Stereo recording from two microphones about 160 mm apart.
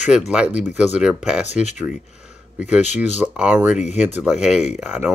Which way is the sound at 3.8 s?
45° left (ahead or behind).